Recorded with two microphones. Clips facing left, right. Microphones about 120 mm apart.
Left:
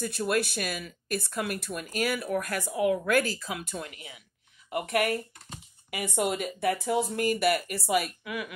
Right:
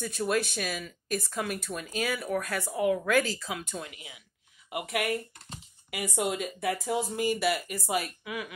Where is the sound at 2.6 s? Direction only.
75° left (ahead or behind).